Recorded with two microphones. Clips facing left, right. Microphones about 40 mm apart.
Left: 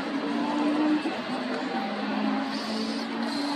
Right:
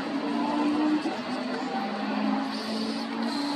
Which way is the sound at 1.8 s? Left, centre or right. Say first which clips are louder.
Even; centre.